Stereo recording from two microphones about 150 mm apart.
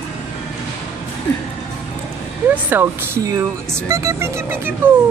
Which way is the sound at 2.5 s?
10° right (ahead or behind).